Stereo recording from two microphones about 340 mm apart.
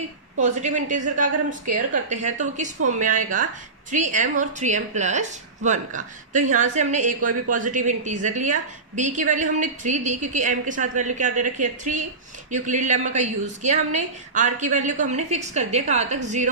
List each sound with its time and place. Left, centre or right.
0.4 s a woman's voice: right